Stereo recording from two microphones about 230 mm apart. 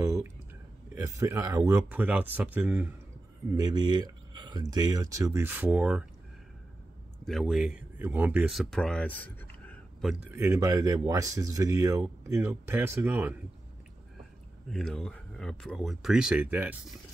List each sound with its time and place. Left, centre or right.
0.0 s speech: centre
3.5 s speech: centre
7.2 s speech: centre
10.3 s speech: centre
14.7 s speech: centre